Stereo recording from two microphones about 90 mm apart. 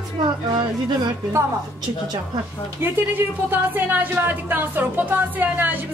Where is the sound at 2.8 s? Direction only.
20° right (ahead or behind).